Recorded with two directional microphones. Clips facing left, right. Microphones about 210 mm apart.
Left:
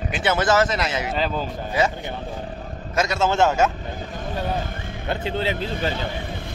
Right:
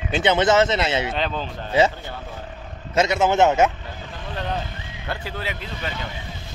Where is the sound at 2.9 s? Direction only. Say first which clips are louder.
Right 2 dB; 20° right (ahead or behind).